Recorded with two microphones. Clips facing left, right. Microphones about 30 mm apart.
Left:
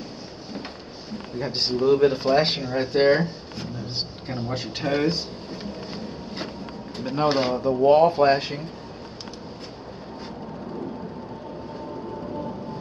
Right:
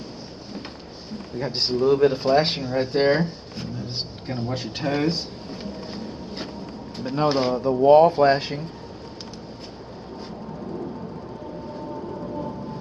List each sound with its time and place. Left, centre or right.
1.3 s speech: centre
10.2 s vehicle: centre
11.7 s music: centre